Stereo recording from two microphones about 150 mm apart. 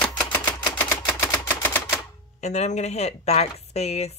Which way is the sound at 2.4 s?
50° left (ahead or behind).